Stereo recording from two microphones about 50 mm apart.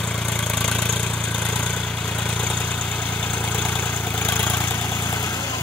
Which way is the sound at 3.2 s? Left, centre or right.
Left.